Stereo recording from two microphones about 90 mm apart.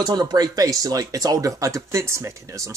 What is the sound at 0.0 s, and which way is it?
Speech, 50° right (ahead or behind).